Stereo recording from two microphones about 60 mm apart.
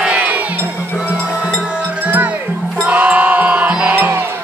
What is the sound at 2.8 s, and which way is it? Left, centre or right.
Music, right.